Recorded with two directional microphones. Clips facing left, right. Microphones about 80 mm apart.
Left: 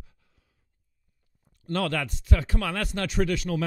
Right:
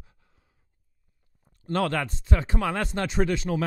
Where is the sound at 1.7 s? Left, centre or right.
Right.